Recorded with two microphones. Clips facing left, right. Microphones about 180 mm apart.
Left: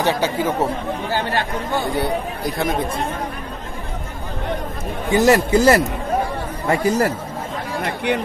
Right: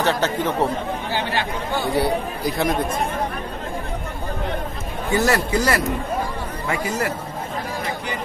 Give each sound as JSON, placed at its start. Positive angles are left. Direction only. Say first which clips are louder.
{"t": 0.0, "sound": "speech", "louder": "left 1 dB", "side_deg": 10}
{"t": 1.1, "sound": "speech", "louder": "left 2 dB", "side_deg": 45}
{"t": 1.9, "sound": "speech", "louder": "right 1 dB", "side_deg": 0}
{"t": 5.1, "sound": "speech", "louder": "left 5 dB", "side_deg": 20}
{"t": 6.7, "sound": "speech", "louder": "left 7 dB", "side_deg": 35}
{"t": 7.8, "sound": "speech", "louder": "left 6 dB", "side_deg": 65}